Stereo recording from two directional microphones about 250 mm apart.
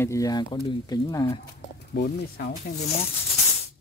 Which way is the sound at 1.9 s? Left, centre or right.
Left.